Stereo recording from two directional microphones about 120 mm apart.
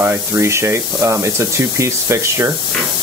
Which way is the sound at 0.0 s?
20° right (ahead or behind).